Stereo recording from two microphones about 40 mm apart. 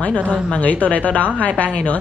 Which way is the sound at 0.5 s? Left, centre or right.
Left.